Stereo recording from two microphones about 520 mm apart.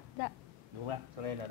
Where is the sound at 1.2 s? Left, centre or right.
Right.